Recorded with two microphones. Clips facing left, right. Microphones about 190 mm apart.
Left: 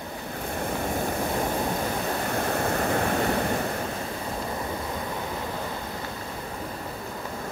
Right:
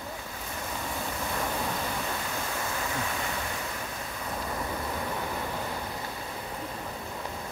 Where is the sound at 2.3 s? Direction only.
55° left (ahead or behind).